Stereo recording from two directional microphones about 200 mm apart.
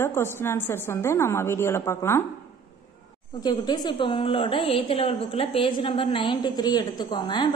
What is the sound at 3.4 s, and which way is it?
A woman's voice, 20° left (ahead or behind).